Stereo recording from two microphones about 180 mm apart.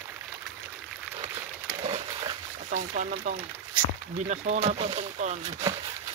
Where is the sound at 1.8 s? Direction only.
35° right (ahead or behind).